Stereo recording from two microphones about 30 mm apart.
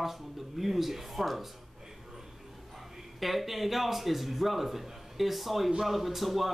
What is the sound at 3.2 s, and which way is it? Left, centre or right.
A man's voice, centre.